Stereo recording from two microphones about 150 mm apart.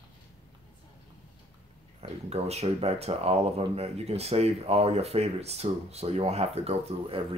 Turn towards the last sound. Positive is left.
turn(degrees=-40)  # may be behind; listen again after turning